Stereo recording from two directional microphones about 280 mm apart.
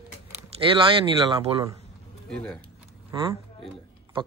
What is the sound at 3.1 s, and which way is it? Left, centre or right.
Speech, centre.